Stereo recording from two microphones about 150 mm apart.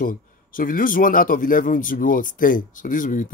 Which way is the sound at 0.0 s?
65° left (ahead or behind).